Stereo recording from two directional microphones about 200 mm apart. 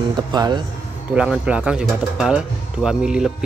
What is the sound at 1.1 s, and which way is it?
Speech, 5° right (ahead or behind).